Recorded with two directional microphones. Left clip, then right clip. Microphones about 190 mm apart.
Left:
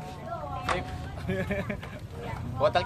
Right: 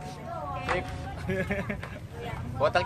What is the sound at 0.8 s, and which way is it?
Speech, 15° right (ahead or behind).